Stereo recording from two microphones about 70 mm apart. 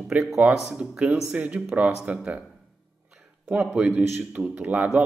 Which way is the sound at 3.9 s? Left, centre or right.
Right.